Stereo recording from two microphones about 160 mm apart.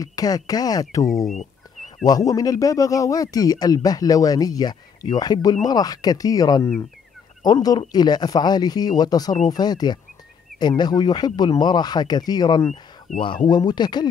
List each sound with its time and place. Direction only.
0.0 s a man's voice: 20° left (ahead or behind)
1.0 s speech: centre (ahead or behind)
2.0 s a man's voice: 20° left (ahead or behind)
13.1 s speech: 55° left (ahead or behind)
13.5 s a man's voice: 25° left (ahead or behind)